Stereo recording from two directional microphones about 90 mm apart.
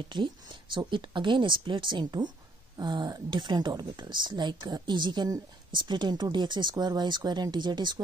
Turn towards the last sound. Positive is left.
turn(degrees=-55)  # may be behind; listen again after turning